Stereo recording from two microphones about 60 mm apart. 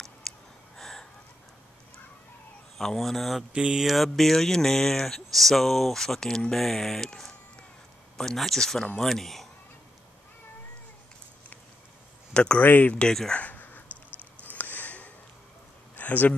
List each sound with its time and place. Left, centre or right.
0.3 s gasp: centre
0.7 s a sound: centre
2.8 s speech: centre
3.5 s mantra: centre
3.8 s speech: centre
12.4 s speech: centre
12.6 s speech: left
13.3 s a sound: left
16.0 s speech: left